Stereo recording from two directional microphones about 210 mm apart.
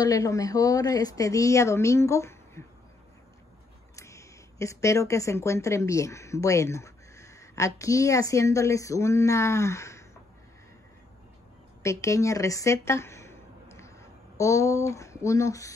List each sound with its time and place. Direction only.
0.0 s speech: 15° left (ahead or behind)
3.9 s speech: 15° left (ahead or behind)
11.8 s speech: 15° left (ahead or behind)